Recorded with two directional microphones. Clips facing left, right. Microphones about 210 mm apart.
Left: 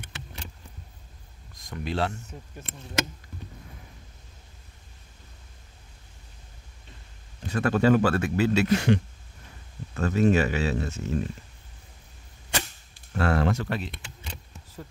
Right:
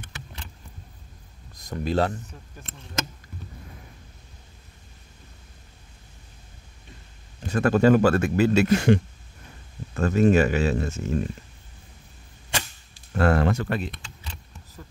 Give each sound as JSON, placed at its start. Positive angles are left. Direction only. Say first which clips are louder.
{"t": 1.7, "sound": "speech", "louder": "right 5 dB", "side_deg": -45}
{"t": 7.4, "sound": "speech", "louder": "right 3 dB", "side_deg": -45}
{"t": 13.2, "sound": "speech", "louder": "right 3 dB", "side_deg": -50}